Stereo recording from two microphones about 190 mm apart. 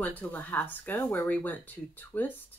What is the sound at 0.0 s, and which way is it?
Speech, 10° left (ahead or behind).